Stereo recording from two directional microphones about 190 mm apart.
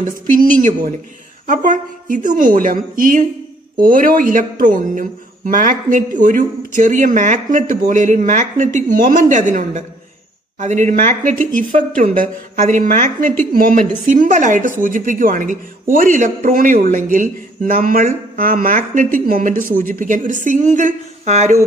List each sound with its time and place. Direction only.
0.0 s a man's voice: 45° right (ahead or behind)